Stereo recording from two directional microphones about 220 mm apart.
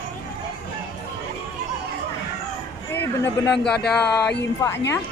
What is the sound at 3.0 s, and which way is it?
Speech, 10° left (ahead or behind).